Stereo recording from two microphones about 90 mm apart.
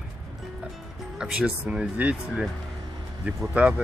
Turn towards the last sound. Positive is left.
turn(degrees=-10)  # may be behind; listen again after turning